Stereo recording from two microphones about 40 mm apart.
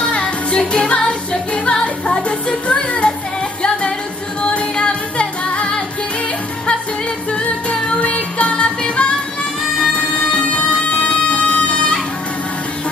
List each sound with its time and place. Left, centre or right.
0.0 s music: left
4.4 s music: left
7.2 s music: left